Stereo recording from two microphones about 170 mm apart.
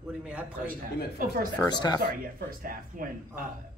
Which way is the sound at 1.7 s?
25° left (ahead or behind).